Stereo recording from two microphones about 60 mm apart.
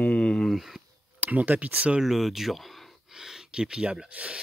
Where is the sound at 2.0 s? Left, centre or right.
Centre.